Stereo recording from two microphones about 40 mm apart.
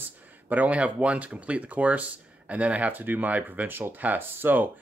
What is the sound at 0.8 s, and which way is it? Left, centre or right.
Speech, right.